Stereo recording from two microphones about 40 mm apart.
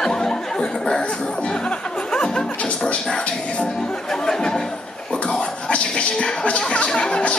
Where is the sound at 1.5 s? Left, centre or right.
Centre.